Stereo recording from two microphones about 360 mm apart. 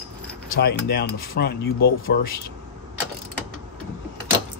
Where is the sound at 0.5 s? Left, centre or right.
Left.